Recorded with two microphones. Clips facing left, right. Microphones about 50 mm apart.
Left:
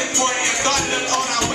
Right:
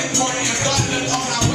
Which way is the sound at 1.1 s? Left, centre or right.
Left.